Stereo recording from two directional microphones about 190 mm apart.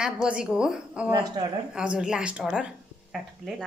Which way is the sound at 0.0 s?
5° right (ahead or behind).